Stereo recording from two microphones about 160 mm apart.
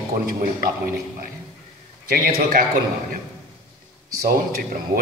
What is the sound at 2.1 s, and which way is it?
Speech, 75° right (ahead or behind).